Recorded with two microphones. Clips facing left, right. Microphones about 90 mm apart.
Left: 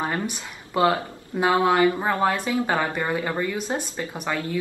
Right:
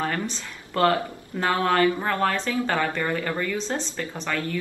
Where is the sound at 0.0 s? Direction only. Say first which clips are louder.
Left 1 dB; 20° left (ahead or behind).